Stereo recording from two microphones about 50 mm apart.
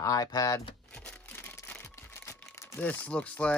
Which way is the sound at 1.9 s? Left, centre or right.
Left.